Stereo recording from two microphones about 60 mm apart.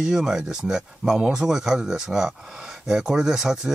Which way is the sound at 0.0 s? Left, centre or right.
Centre.